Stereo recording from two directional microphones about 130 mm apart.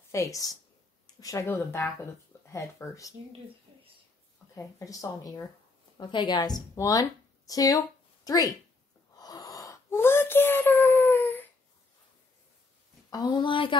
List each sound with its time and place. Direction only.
0.1 s speech: 25° left (ahead or behind)
4.6 s speech: 25° left (ahead or behind)
5.9 s a woman's voice: 35° left (ahead or behind)
9.1 s wheeze: 30° left (ahead or behind)
13.1 s speech: 35° left (ahead or behind)